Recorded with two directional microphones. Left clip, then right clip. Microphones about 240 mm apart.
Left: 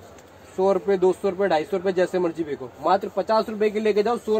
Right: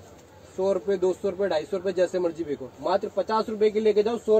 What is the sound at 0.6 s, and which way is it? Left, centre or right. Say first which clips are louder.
Speech: left 4 dB; left.